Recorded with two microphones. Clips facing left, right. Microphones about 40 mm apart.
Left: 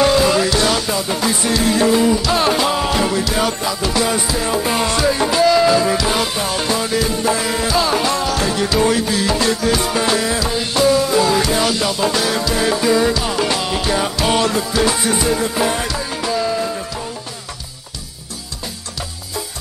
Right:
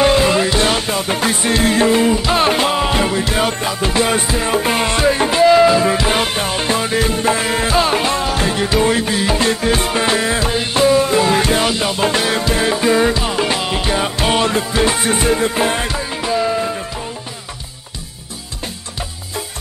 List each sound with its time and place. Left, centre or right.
0.0 s music: right
2.7 s music: right
6.0 s music: right
11.7 s music: right
12.6 s music: right
16.1 s music: centre